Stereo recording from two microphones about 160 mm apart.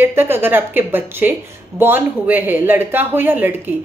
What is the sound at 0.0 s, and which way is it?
A woman's voice, 15° right (ahead or behind).